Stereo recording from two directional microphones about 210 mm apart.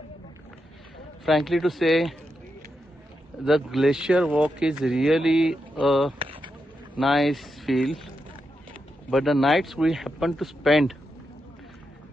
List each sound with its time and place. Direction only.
1.2 s a man's voice: centre (ahead or behind)
3.4 s a man's voice: centre (ahead or behind)
6.1 s a sound: 25° right (ahead or behind)
7.0 s a man's voice: centre (ahead or behind)
9.1 s a man's voice: centre (ahead or behind)